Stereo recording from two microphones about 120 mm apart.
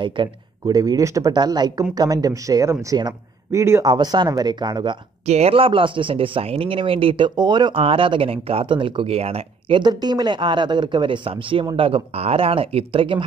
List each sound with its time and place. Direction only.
0.0 s speech: 45° right (ahead or behind)
0.7 s speech: 30° right (ahead or behind)
5.2 s speech: 65° right (ahead or behind); by 7.7 s 35° right (ahead or behind)
7.7 s speech: 50° right (ahead or behind)